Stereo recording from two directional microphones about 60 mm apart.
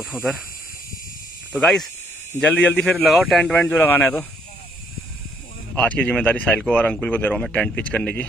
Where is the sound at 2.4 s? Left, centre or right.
Left.